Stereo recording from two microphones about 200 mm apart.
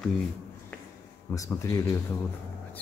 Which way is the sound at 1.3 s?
15° left (ahead or behind).